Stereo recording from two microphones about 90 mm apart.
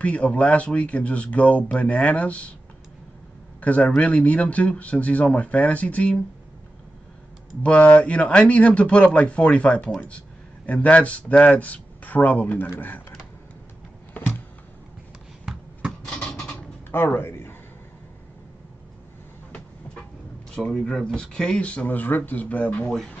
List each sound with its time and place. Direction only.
0.0 s speech: 15° left (ahead or behind)
3.6 s speech: 15° left (ahead or behind)
7.6 s speech: 15° left (ahead or behind)
14.1 s a sound: 20° left (ahead or behind)
16.0 s a sound: 10° left (ahead or behind)
16.9 s speech: 25° left (ahead or behind)
19.5 s train: 15° left (ahead or behind)
20.5 s speech: 10° left (ahead or behind)